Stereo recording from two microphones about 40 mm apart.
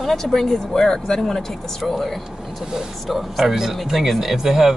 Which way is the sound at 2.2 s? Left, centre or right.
Centre.